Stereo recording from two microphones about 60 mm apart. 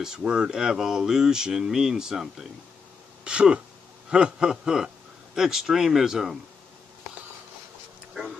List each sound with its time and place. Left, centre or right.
0.2 s a man's voice: centre